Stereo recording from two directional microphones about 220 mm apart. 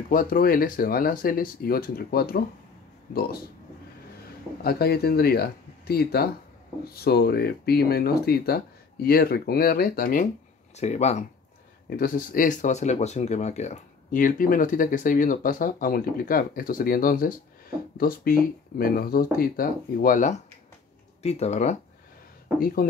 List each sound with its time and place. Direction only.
0.1 s speech: 40° left (ahead or behind)
4.6 s speech: 45° left (ahead or behind)
10.8 s speech: 30° left (ahead or behind)
22.8 s speech: 40° left (ahead or behind)